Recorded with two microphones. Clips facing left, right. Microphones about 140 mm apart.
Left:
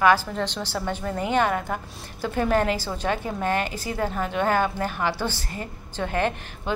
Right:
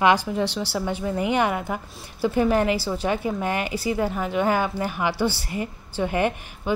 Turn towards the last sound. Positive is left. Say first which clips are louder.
# right 2 dB
turn(degrees=-10)  # may be behind; listen again after turning